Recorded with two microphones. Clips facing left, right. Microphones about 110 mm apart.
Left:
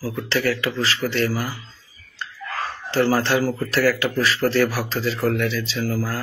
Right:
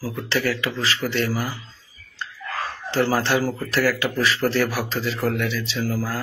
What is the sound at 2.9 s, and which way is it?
Speech, 10° right (ahead or behind).